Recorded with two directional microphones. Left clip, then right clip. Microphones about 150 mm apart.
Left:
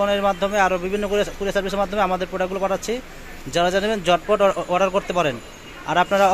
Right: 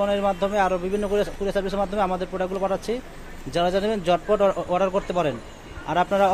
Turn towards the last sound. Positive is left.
turn(degrees=0)  # may be behind; listen again after turning